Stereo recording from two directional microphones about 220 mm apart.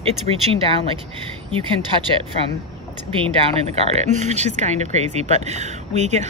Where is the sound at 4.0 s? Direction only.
30° right (ahead or behind).